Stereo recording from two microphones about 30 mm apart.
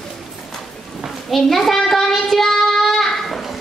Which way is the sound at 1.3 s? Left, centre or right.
Centre.